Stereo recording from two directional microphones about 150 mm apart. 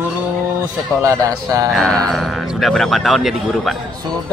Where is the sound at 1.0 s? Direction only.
20° right (ahead or behind).